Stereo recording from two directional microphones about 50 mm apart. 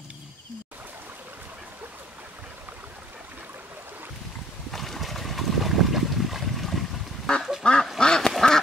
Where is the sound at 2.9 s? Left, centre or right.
Right.